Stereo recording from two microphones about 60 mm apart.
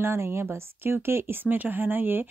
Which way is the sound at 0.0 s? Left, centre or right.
Right.